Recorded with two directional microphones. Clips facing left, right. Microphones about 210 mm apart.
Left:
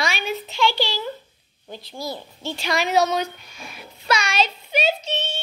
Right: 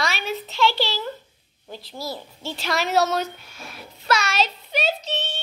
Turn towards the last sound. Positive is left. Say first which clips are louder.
# left 2 dB
turn(degrees=0)  # may be behind; listen again after turning